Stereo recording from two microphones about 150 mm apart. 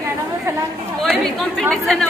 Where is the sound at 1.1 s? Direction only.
Centre (ahead or behind).